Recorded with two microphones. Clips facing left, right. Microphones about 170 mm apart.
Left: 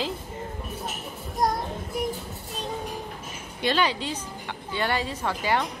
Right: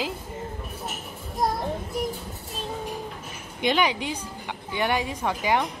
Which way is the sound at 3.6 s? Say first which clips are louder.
Right 1 dB; 15° right (ahead or behind).